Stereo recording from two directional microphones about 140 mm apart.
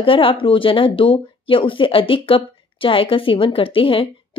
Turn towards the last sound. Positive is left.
turn(degrees=40)  # may be behind; listen again after turning